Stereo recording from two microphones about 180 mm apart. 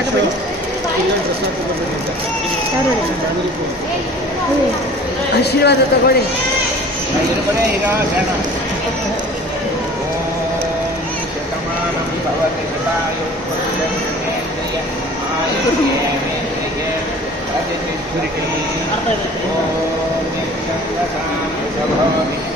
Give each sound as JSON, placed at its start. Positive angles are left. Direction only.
{"t": 5.4, "sound": "a man's voice", "side_deg": 65}